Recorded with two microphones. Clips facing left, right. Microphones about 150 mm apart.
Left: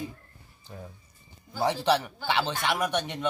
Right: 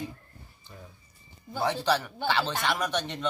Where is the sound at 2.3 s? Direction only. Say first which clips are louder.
Left 1 dB; 15° left (ahead or behind).